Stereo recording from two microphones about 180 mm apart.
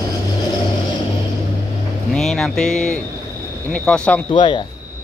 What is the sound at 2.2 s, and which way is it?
Speech, 5° left (ahead or behind).